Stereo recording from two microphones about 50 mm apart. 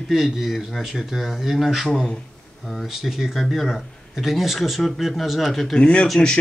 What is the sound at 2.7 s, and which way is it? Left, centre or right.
Speech, centre.